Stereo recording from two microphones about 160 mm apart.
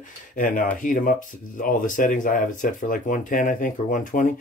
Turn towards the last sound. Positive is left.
turn(degrees=55)  # may be behind; listen again after turning